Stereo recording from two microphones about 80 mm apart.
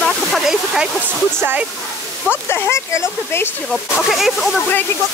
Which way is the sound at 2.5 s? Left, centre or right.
Left.